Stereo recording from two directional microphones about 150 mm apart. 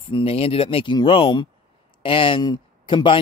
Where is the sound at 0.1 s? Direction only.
35° left (ahead or behind).